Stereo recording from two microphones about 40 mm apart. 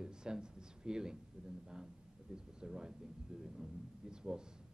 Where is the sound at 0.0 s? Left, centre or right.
Centre.